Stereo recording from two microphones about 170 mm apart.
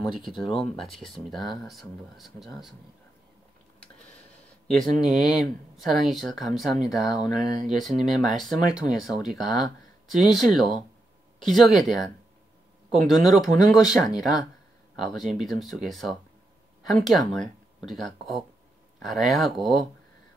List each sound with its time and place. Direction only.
0.1 s speech: centre (ahead or behind)
0.5 s speech: 35° left (ahead or behind)
0.9 s speech: centre (ahead or behind)
3.8 s a sound: 5° left (ahead or behind)
5.0 s speech: centre (ahead or behind)
13.0 s speech: centre (ahead or behind)